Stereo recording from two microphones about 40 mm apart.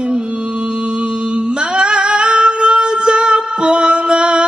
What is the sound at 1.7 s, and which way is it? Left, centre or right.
Music, right.